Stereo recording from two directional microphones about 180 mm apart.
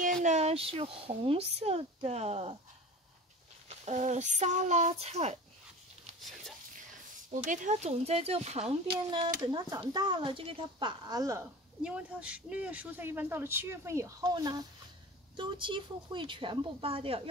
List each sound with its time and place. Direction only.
0.0 s speech: 45° right (ahead or behind)
3.6 s a child's voice: 40° right (ahead or behind)
7.2 s a child's voice: 45° right (ahead or behind)
9.4 s speech: 25° right (ahead or behind)
11.8 s speech: 5° right (ahead or behind); by 17.2 s 30° right (ahead or behind)